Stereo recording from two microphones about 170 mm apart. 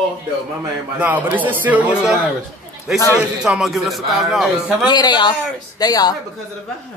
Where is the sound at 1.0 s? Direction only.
10° right (ahead or behind).